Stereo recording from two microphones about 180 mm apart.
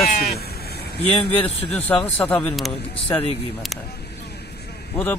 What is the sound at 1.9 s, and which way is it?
Speech, 5° left (ahead or behind).